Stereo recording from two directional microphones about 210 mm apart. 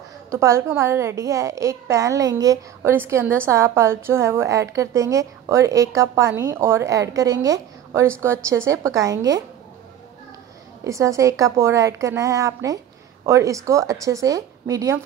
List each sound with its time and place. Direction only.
0.3 s a woman's voice: 15° right (ahead or behind)
10.8 s a woman's voice: 15° right (ahead or behind)